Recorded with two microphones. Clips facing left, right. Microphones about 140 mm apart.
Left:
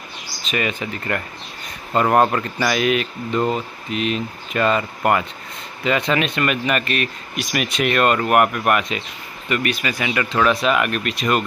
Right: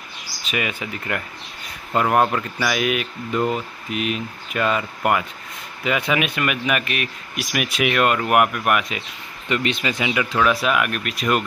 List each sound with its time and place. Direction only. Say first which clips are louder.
0.5 s speech: left 3 dB; 10° right (ahead or behind)
9.5 s speech: even; 20° right (ahead or behind)
10.1 s speech: left 2 dB; 5° right (ahead or behind)